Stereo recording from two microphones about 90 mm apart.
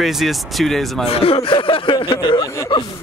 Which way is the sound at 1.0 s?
90° left.